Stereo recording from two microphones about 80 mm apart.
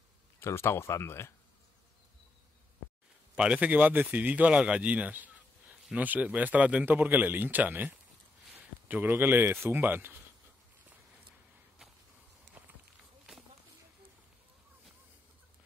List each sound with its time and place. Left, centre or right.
0.4 s speech: left
3.3 s a man's voice: centre
12.6 s a sound: right